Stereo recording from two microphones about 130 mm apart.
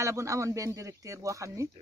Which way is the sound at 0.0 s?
25° right (ahead or behind).